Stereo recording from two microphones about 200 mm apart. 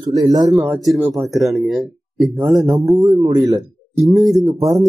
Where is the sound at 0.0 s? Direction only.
20° right (ahead or behind).